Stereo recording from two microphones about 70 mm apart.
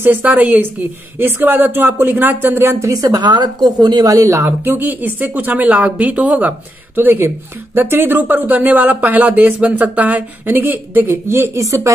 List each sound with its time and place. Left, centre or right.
0.0 s speech: right
2.9 s a woman's voice: right
4.5 s speech: right
7.0 s speech: right
11.6 s speech: right